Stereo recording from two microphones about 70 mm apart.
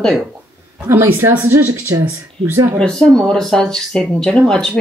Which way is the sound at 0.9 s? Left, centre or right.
Right.